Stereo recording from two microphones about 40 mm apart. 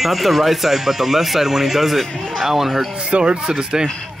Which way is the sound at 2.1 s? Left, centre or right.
Centre.